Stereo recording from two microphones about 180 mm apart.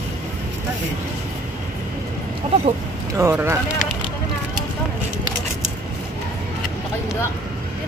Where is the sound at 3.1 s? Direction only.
15° right (ahead or behind).